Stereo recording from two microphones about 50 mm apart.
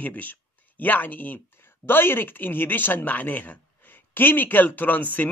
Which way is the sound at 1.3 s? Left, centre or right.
Left.